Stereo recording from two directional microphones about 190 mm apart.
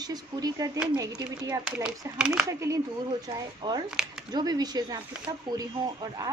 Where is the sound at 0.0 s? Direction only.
20° right (ahead or behind).